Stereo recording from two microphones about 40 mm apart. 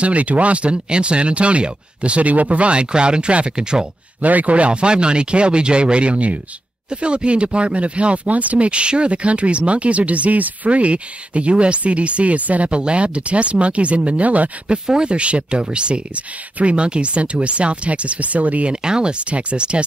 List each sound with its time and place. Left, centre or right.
0.0 s speech: right
4.2 s speech: right
14.9 s speech: right
18.7 s speech: centre